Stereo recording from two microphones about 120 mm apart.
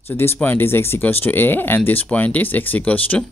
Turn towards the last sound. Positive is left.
turn(degrees=10)  # may be behind; listen again after turning